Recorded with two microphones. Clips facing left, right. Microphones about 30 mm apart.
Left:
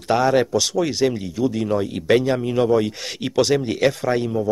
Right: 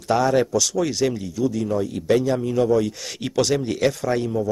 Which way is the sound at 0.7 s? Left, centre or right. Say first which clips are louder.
Left 2 dB; centre.